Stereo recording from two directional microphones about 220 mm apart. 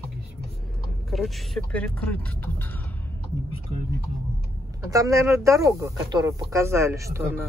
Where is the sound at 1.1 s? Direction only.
Centre (ahead or behind).